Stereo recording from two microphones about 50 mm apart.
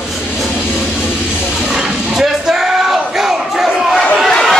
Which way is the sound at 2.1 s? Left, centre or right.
Centre.